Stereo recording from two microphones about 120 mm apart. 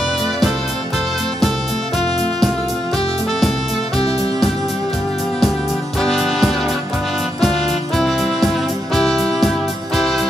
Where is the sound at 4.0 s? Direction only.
50° left (ahead or behind).